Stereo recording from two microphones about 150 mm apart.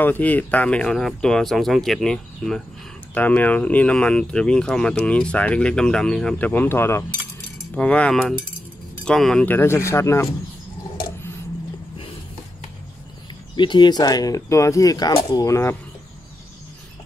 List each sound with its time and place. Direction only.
0.0 s speech: 10° left (ahead or behind)
13.6 s speech: 30° left (ahead or behind)